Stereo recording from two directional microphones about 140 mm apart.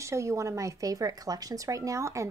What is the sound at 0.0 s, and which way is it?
A woman's voice, 20° right (ahead or behind).